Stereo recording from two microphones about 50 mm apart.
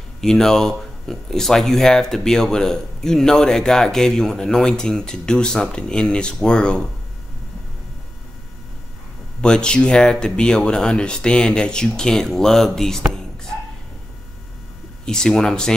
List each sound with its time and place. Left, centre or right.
0.2 s speech: centre
9.4 s speech: centre
15.0 s speech: centre